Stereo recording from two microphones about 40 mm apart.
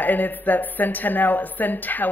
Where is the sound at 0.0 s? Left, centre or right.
Left.